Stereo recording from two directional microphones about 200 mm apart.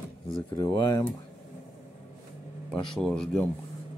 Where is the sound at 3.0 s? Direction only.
5° left (ahead or behind).